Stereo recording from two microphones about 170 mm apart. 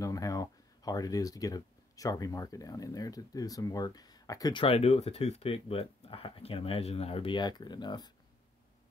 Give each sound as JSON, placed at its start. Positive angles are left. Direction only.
{"t": 0.0, "sound": "speech", "side_deg": 20}